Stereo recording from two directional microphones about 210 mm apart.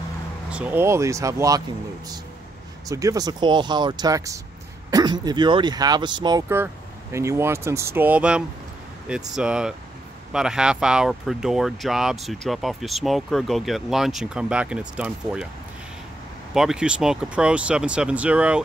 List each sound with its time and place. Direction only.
0.5 s speech: 5° right (ahead or behind)
2.9 s speech: 15° right (ahead or behind)
16.5 s speech: 5° right (ahead or behind)